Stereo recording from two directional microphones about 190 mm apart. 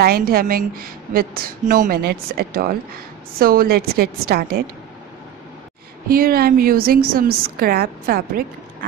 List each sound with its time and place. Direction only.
0.0 s a woman's voice: 50° right (ahead or behind)
6.0 s a woman's voice: 50° right (ahead or behind)